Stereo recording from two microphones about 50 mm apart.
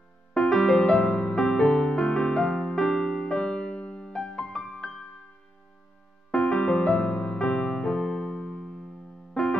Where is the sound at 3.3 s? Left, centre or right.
Centre.